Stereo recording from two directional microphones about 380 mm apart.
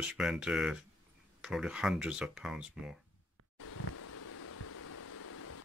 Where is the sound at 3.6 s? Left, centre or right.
Left.